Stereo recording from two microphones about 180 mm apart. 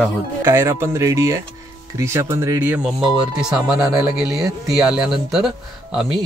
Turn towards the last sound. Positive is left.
turn(degrees=0)  # may be behind; listen again after turning